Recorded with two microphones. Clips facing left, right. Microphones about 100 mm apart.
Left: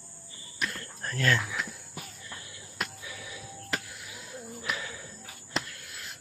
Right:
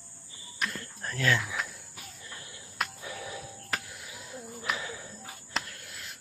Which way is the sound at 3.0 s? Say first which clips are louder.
Right 4 dB; 40° right (ahead or behind).